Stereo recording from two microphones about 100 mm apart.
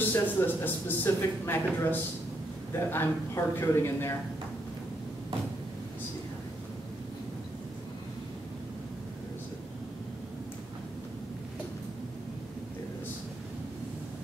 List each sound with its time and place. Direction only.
0.1 s speech: 20° left (ahead or behind)